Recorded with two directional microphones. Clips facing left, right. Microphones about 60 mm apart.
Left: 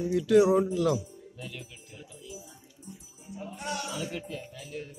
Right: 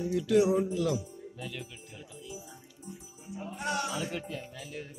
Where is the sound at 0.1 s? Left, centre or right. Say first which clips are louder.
Left 4 dB; left.